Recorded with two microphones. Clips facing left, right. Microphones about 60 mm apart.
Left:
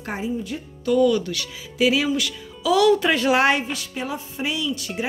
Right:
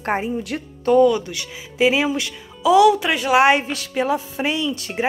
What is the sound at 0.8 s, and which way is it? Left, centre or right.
Speech, right.